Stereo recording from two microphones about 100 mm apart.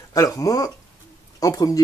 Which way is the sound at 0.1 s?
35° left (ahead or behind).